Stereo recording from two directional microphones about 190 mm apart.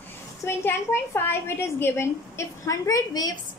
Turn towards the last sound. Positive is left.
turn(degrees=20)  # may be behind; listen again after turning